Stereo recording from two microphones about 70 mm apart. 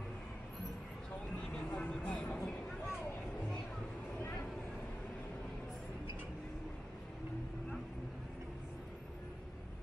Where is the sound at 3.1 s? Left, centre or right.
Centre.